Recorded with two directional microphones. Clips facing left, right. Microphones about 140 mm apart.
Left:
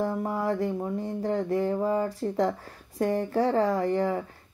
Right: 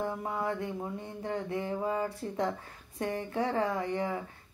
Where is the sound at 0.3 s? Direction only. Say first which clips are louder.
Left 6 dB; 40° left (ahead or behind).